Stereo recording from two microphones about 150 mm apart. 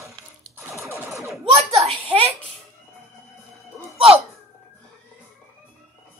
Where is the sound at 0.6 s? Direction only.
20° right (ahead or behind).